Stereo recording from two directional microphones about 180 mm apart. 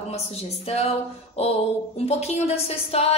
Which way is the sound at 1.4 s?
35° left (ahead or behind).